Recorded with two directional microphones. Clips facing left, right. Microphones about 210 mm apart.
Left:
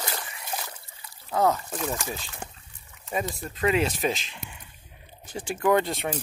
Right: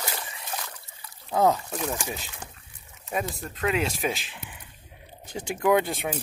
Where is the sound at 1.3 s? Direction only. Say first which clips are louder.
Right 1 dB; 15° right (ahead or behind).